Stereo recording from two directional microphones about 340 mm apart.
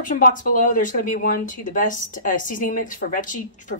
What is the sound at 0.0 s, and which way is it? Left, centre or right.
Speech, left.